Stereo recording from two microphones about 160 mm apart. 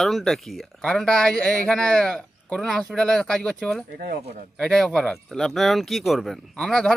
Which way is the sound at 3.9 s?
75° right (ahead or behind).